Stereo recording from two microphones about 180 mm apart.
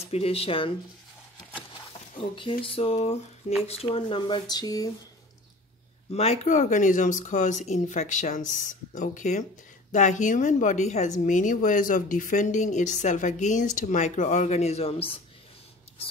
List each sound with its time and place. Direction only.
0.1 s speech: 35° left (ahead or behind)
2.1 s speech: 30° left (ahead or behind)
6.1 s a woman's voice: 35° left (ahead or behind)